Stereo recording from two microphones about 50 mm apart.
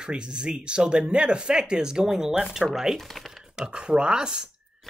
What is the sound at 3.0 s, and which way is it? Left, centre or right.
Speech, centre.